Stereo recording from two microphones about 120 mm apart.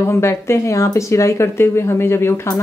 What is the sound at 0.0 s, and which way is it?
Speech, 20° left (ahead or behind).